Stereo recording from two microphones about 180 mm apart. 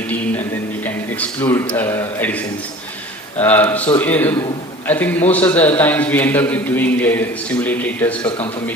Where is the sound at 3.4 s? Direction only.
10° left (ahead or behind).